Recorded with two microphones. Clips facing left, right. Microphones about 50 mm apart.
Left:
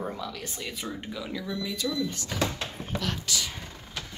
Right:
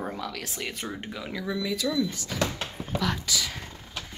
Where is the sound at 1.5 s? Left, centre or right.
Right.